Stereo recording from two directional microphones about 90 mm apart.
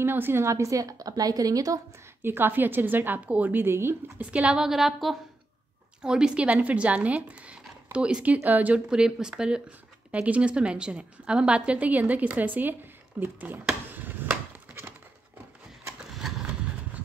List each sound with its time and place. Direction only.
0.0 s a woman's voice: 25° right (ahead or behind); by 1.8 s 40° right (ahead or behind)
2.2 s a woman's voice: 25° right (ahead or behind)
4.2 s a woman's voice: 10° right (ahead or behind)
13.9 s a sound: 20° right (ahead or behind)